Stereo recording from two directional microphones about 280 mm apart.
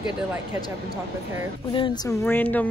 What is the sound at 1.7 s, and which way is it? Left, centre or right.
Speech, centre.